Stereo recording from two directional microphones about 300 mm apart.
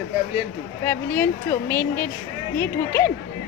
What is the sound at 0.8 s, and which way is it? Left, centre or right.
A woman's voice, centre.